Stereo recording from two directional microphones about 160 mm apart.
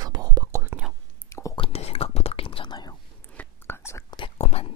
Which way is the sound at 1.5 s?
35° left (ahead or behind).